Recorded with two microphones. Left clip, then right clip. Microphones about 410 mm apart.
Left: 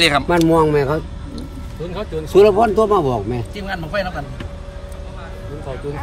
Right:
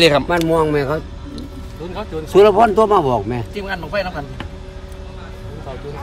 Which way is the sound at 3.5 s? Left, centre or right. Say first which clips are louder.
Right 1 dB; right.